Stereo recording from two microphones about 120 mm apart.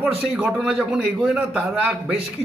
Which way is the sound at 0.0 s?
15° right (ahead or behind).